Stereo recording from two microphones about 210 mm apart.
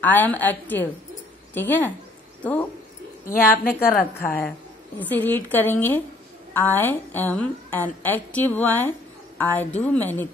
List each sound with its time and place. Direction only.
0.0 s a woman's voice: 10° left (ahead or behind)
3.3 s speech: 45° left (ahead or behind)
4.0 s a woman's voice: 10° left (ahead or behind)